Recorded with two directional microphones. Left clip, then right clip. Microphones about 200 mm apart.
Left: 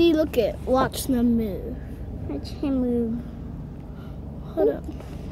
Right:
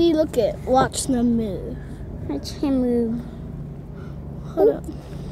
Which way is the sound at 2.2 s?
30° right (ahead or behind).